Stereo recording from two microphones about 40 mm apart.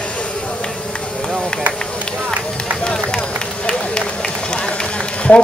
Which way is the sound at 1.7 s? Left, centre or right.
Left.